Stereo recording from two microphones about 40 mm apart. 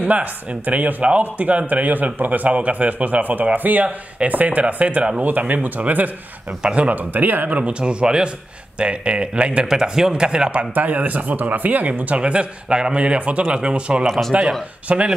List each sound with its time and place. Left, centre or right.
0.0 s a man's voice: right
6.6 s a man's voice: right
7.2 s speech: right
7.4 s a man's voice: right
7.8 s a man's voice: right
9.7 s a man's voice: centre
10.7 s speech: right
12.2 s a man's voice: right
13.5 s a man's voice: right